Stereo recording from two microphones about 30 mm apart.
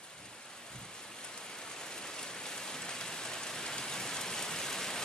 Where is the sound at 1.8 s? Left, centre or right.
Left.